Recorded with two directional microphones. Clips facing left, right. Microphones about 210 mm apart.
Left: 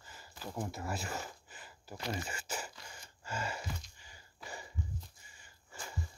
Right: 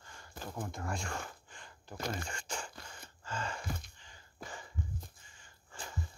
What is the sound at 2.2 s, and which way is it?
Speech, 5° left (ahead or behind).